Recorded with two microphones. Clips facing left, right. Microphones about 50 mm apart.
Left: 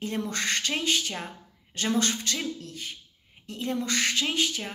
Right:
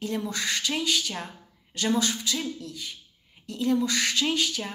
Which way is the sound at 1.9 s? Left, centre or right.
Left.